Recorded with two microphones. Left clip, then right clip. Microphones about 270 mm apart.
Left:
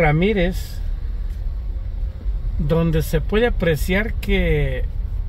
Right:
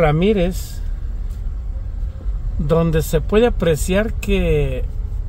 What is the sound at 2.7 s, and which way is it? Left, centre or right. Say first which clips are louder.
A man's voice: right 4 dB; centre.